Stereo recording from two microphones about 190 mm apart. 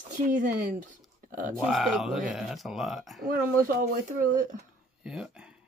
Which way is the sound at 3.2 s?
45° right (ahead or behind).